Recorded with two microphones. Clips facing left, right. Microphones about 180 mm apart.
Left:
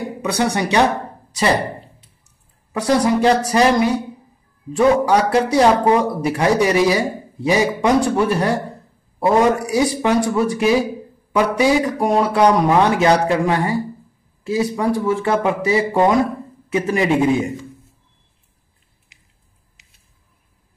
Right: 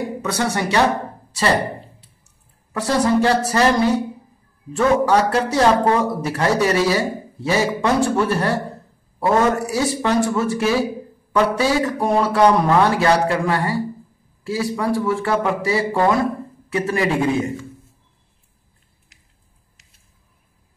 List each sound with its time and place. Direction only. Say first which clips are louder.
0.2 s a man's voice: left 4 dB; 15° left (ahead or behind)
2.7 s a man's voice: left 1 dB; 15° left (ahead or behind)